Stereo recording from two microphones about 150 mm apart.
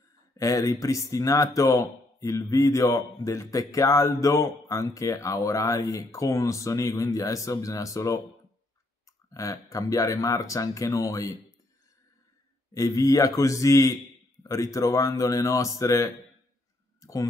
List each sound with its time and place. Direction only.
0.4 s speech: 25° left (ahead or behind)
9.3 s speech: 20° left (ahead or behind)
12.7 s speech: 20° left (ahead or behind)
17.0 s a sound: 20° left (ahead or behind)